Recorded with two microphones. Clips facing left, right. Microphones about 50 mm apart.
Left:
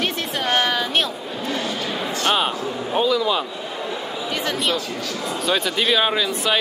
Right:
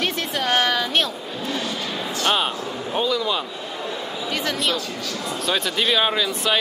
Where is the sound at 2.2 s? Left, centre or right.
Centre.